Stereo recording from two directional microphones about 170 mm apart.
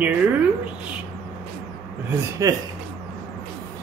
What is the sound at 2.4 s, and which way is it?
Speech, 20° right (ahead or behind).